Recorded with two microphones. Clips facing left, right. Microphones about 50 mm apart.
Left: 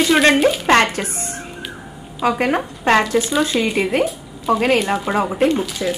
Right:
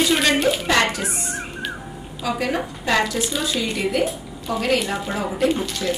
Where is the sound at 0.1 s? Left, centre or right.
Left.